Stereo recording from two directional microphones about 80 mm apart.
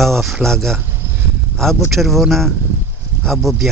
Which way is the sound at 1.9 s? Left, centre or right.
Centre.